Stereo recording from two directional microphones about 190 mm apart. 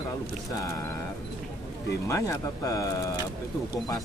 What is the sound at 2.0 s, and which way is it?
Speech, 15° left (ahead or behind).